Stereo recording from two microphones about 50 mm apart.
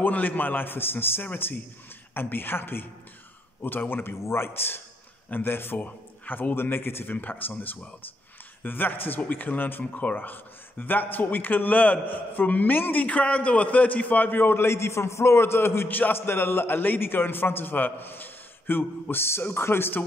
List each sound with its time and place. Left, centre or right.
0.0 s a man's voice: left
4.2 s a man's voice: left
5.8 s speech: left
7.2 s a man's voice: left
13.0 s a man's voice: left
14.7 s a man's voice: left
15.9 s a man's voice: left